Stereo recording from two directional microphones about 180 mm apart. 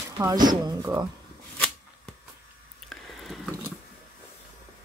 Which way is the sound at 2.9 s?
Centre (ahead or behind).